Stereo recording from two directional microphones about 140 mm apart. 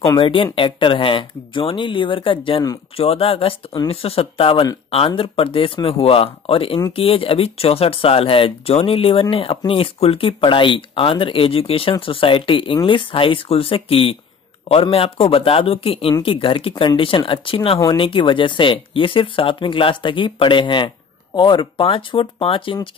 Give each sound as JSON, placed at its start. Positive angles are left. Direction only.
{"t": 0.2, "sound": "a man's voice", "side_deg": 40}